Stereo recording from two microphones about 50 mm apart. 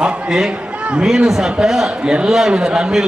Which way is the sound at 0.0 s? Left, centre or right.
Centre.